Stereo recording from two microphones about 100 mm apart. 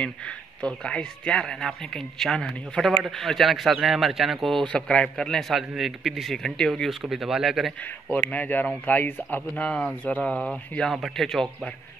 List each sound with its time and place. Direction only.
0.6 s a man's voice: 10° left (ahead or behind)
8.1 s a man's voice: 15° left (ahead or behind)